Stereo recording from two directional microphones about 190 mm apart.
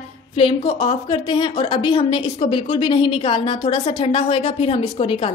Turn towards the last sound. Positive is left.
turn(degrees=30)  # may be behind; listen again after turning